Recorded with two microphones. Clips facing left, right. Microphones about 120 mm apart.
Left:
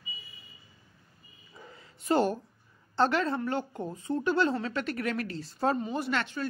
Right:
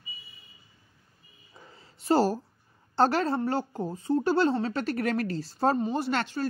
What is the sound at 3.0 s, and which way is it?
A woman's voice, 35° right (ahead or behind).